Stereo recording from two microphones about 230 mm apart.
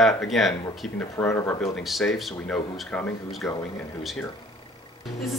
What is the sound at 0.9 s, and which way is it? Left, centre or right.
Speech, centre.